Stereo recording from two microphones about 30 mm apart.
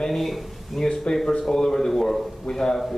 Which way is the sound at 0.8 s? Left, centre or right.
Left.